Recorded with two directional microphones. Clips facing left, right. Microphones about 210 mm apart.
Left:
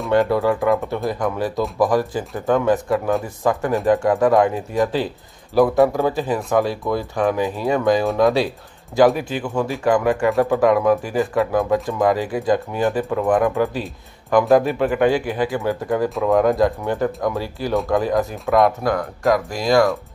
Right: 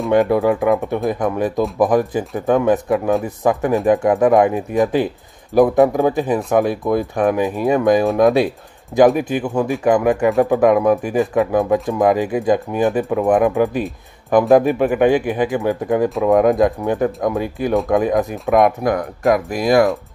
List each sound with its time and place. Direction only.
0.1 s speech: 15° right (ahead or behind)